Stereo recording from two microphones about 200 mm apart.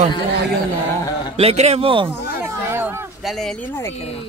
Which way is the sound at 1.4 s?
30° right (ahead or behind).